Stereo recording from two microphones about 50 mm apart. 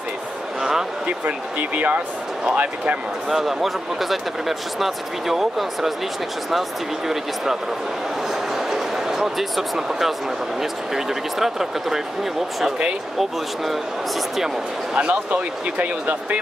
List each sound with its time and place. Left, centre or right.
0.6 s a sound: centre
1.0 s speech: right
3.3 s speech: centre
8.5 s a sound: centre
10.6 s speech: centre
15.0 s speech: right
15.8 s speech: right